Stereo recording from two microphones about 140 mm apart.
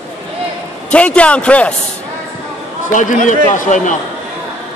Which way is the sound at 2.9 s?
65° left (ahead or behind).